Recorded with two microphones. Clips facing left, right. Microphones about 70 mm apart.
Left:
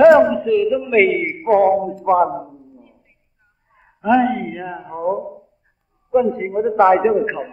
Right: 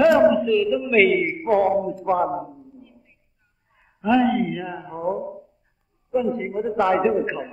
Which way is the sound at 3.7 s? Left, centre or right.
Left.